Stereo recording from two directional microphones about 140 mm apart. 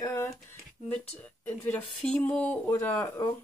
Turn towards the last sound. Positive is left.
turn(degrees=20)  # may be behind; listen again after turning